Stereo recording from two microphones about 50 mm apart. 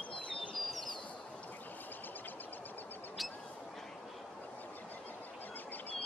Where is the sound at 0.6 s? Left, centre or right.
Centre.